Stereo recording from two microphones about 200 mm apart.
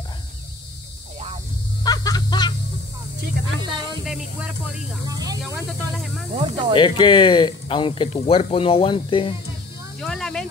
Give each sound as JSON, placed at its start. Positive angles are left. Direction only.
{"t": 1.9, "sound": "a sound", "side_deg": 20}
{"t": 4.0, "sound": "snake", "side_deg": -5}
{"t": 5.0, "sound": "snake", "side_deg": -20}
{"t": 5.7, "sound": "snake", "side_deg": 0}
{"t": 6.3, "sound": "snake", "side_deg": -25}
{"t": 6.7, "sound": "speech", "side_deg": 25}
{"t": 9.9, "sound": "snake", "side_deg": 0}